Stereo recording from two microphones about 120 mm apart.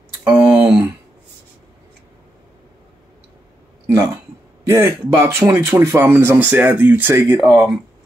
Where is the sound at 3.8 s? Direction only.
25° right (ahead or behind).